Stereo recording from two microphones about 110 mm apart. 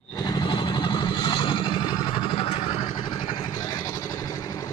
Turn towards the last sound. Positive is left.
turn(degrees=50)  # may be behind; listen again after turning